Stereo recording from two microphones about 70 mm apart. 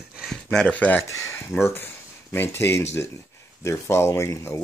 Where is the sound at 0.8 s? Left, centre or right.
Left.